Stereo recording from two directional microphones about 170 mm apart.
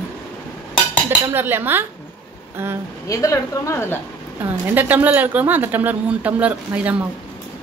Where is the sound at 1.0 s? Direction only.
15° right (ahead or behind).